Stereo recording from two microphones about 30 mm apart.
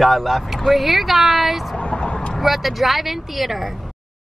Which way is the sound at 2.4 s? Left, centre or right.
Centre.